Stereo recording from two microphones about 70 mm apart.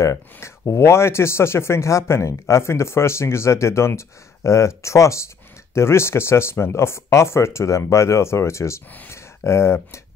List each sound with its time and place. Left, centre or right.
0.0 s speech: left